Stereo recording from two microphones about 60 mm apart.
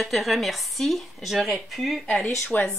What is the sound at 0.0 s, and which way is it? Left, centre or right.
Speech, centre.